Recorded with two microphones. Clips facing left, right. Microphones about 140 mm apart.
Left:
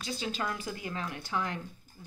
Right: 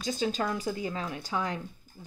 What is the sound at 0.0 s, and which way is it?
Speech, 40° right (ahead or behind).